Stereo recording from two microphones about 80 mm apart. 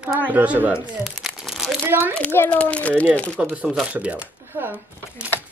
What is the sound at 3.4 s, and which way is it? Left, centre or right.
Speech, centre.